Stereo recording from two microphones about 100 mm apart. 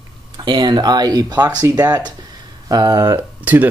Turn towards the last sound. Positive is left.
turn(degrees=-15)  # may be behind; listen again after turning